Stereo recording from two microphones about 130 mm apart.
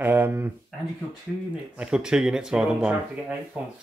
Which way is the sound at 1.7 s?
5° right (ahead or behind).